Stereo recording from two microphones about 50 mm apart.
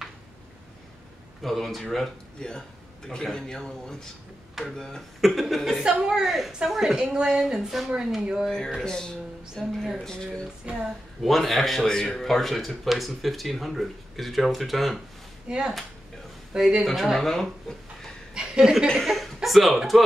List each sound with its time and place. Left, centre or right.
1.4 s speech: centre
3.1 s a man's voice: centre
5.9 s speech: centre
6.2 s speech: centre
8.5 s a man's voice: centre
10.6 s speech: centre
11.2 s speech: centre
15.4 s speech: centre
18.3 s a woman's voice: centre
18.9 s speech: centre